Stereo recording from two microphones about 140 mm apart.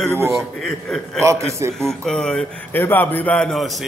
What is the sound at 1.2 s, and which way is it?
Speech, 20° right (ahead or behind).